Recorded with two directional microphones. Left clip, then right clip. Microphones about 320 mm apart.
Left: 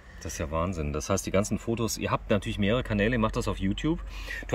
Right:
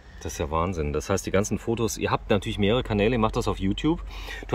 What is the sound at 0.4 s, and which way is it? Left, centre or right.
Speech, centre.